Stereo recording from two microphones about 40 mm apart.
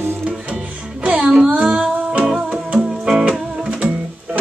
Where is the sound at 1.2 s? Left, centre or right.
Right.